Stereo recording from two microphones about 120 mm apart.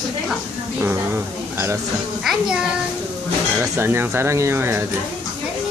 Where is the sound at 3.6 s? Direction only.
20° right (ahead or behind).